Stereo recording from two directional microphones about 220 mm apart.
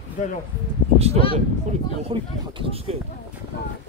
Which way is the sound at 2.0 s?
25° right (ahead or behind).